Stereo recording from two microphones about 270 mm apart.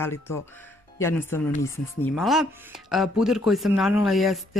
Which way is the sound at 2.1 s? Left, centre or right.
Centre.